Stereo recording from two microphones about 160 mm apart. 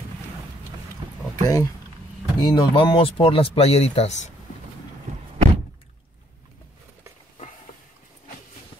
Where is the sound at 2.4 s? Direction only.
30° left (ahead or behind).